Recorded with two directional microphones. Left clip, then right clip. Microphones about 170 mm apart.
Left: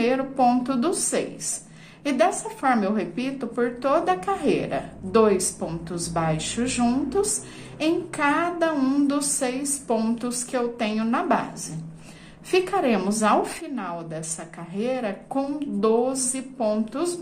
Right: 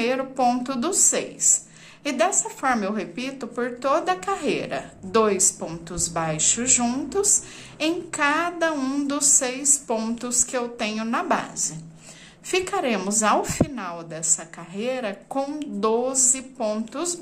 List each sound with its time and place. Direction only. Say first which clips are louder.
0.0 s a woman's voice: left 1 dB; 15° right (ahead or behind)